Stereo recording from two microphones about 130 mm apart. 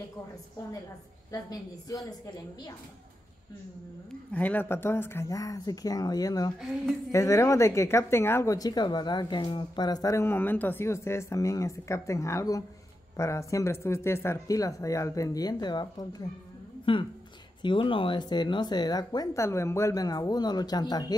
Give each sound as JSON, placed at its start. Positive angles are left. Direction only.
{"t": 1.3, "sound": "speech", "side_deg": 30}
{"t": 4.3, "sound": "speech", "side_deg": 10}
{"t": 17.6, "sound": "speech", "side_deg": 40}